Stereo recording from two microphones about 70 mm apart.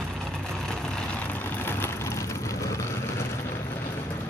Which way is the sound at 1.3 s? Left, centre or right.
Left.